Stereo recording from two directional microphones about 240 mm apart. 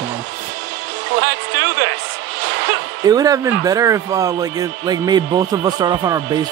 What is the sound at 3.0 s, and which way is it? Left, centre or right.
Speech, centre.